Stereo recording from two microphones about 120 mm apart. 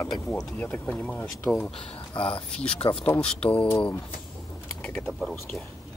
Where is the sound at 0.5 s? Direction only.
10° left (ahead or behind).